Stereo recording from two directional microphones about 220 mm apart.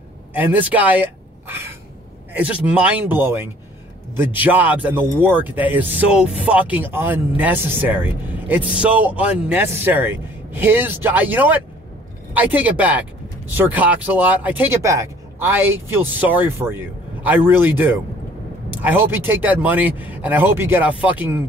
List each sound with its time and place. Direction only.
0.3 s a man's voice: 10° right (ahead or behind)